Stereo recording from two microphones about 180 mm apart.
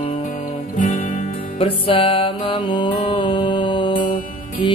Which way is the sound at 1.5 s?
30° left (ahead or behind).